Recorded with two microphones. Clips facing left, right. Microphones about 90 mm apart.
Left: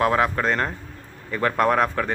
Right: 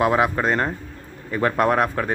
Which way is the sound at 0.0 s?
10° right (ahead or behind).